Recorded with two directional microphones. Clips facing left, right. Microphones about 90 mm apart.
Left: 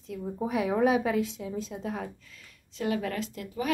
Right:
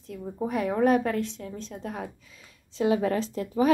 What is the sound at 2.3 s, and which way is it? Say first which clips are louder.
Speech: even; 20° right (ahead or behind).